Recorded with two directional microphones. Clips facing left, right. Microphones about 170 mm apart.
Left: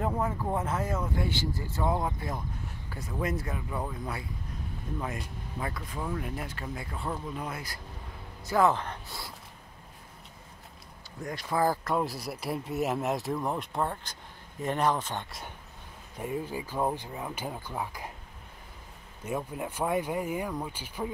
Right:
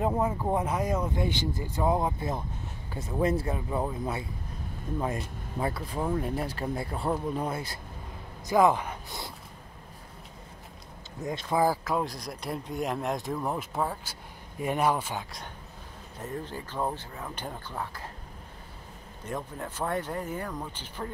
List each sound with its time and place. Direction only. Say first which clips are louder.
0.0 s speech: right 3 dB; 20° right (ahead or behind)
8.5 s speech: right 2 dB; 15° right (ahead or behind)
11.2 s speech: right 3 dB; 20° right (ahead or behind)
11.6 s speech: left 1 dB; 5° right (ahead or behind)
16.2 s speech: left 3 dB; 10° left (ahead or behind)
19.2 s speech: left 2 dB; 10° left (ahead or behind)